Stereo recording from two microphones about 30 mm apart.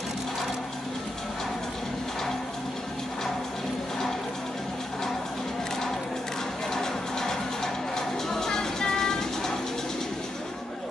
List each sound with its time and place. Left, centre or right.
6.7 s music: centre